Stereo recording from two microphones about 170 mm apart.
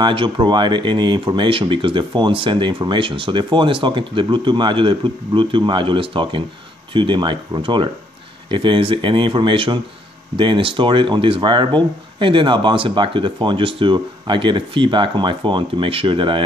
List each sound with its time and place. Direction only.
0.0 s speech: 30° right (ahead or behind)